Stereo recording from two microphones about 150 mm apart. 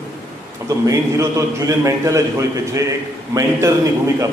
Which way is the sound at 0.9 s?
20° right (ahead or behind).